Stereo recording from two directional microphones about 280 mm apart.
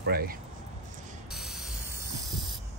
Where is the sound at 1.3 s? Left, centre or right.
Centre.